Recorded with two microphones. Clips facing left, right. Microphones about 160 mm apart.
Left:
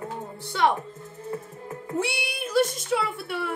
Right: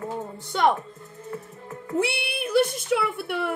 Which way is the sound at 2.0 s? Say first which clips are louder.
Right 3 dB; 60° right (ahead or behind).